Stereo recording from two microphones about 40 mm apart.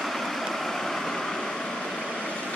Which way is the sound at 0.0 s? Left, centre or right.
Centre.